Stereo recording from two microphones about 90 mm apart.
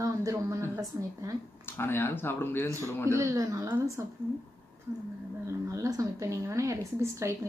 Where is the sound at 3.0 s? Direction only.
35° right (ahead or behind).